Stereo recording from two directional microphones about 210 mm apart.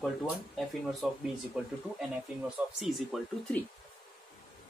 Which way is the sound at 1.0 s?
Centre (ahead or behind).